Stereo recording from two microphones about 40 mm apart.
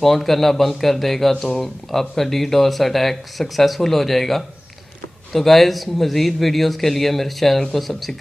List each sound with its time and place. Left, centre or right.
0.0 s speech: centre